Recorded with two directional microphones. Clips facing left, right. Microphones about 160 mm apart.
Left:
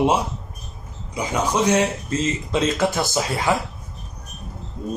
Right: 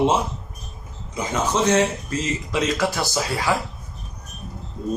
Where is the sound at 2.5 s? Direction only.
25° left (ahead or behind).